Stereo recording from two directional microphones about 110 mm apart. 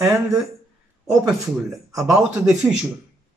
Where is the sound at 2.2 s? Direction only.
10° right (ahead or behind).